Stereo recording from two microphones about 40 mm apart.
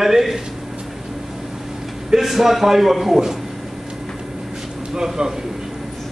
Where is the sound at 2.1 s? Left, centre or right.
Centre.